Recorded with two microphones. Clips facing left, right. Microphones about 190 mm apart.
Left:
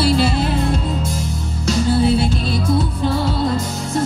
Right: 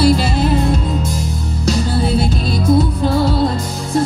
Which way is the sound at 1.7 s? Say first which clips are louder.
Left 1 dB; 40° right (ahead or behind).